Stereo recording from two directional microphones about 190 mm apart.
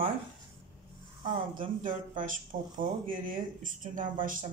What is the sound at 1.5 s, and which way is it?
Speech, 45° right (ahead or behind).